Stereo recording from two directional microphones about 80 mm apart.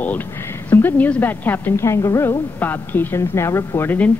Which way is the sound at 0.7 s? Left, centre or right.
Left.